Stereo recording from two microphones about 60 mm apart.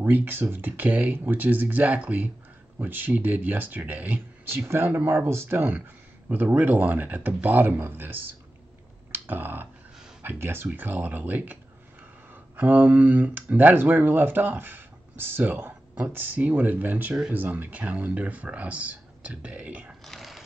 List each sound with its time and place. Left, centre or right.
0.0 s speech: right
4.5 s speech: right
6.2 s speech: right
9.1 s a sound: right
10.2 s speech: right
12.5 s speech: right
20.1 s mechanisms: centre